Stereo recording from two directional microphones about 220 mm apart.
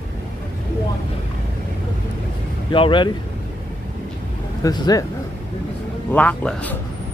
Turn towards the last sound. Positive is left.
turn(degrees=5)  # may be behind; listen again after turning